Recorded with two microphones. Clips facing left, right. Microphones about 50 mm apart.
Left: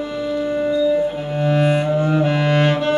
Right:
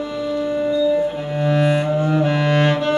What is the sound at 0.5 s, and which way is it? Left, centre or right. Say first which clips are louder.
Music: even; left.